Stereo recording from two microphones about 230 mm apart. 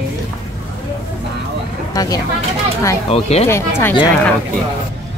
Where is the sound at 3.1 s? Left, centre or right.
Left.